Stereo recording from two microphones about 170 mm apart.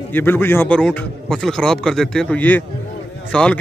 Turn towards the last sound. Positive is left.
turn(degrees=5)  # may be behind; listen again after turning